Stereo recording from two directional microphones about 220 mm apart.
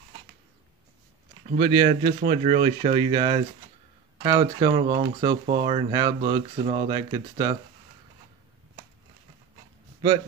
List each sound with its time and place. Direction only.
1.6 s speech: 25° right (ahead or behind)